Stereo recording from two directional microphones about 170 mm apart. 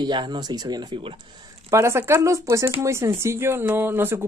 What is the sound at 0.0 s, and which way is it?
Speech, 25° right (ahead or behind).